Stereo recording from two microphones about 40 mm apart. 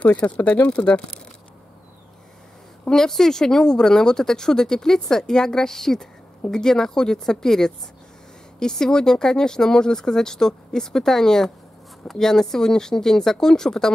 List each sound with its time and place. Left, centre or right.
0.0 s speech: left
2.9 s speech: centre